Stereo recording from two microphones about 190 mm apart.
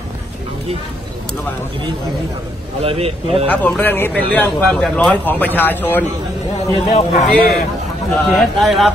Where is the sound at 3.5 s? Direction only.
10° left (ahead or behind).